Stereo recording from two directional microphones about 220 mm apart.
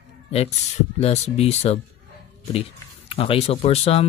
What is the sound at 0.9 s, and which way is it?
Speech, 30° left (ahead or behind).